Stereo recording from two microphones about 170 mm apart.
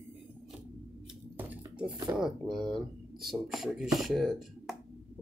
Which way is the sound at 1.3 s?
10° right (ahead or behind).